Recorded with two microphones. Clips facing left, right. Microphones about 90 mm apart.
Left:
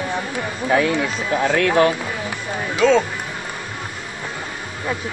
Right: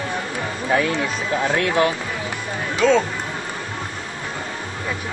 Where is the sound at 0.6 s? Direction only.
15° left (ahead or behind).